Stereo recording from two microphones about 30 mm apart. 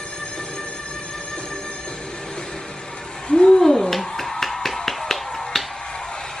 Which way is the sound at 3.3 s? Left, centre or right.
Left.